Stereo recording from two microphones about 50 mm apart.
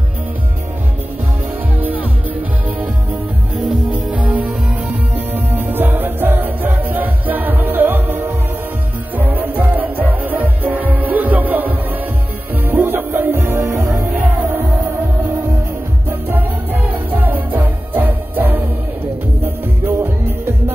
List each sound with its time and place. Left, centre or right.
1.8 s music: right
3.9 s music: right
5.1 s music: right
16.1 s music: right